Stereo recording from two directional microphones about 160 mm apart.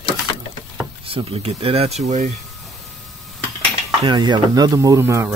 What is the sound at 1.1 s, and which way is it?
Speech, 35° right (ahead or behind).